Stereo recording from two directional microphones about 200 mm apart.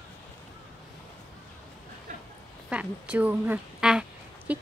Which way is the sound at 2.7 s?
5° right (ahead or behind).